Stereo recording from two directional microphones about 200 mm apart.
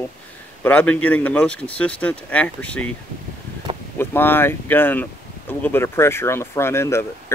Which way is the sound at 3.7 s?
25° right (ahead or behind).